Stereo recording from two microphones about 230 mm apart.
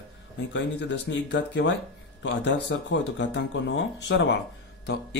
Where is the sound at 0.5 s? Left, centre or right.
Left.